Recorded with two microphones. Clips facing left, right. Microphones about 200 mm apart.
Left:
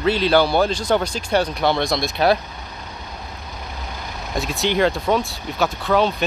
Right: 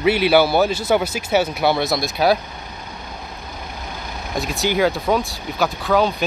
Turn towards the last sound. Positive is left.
turn(degrees=0)  # may be behind; listen again after turning